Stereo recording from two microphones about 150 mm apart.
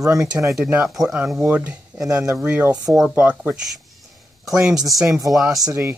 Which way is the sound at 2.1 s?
20° right (ahead or behind).